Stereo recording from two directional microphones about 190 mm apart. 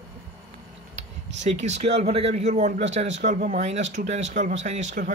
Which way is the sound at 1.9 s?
30° right (ahead or behind).